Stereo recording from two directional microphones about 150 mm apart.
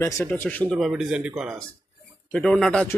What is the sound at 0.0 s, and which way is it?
Speech, 10° left (ahead or behind).